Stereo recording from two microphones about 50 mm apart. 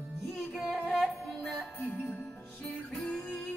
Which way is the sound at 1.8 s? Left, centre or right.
Left.